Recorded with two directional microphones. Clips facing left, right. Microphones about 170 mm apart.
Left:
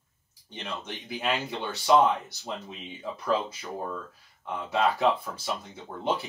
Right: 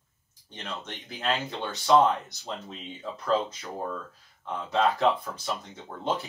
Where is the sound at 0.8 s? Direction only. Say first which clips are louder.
Even; 15° left (ahead or behind).